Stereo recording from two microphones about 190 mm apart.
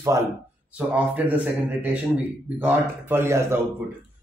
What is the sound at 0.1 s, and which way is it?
Speech, 15° right (ahead or behind).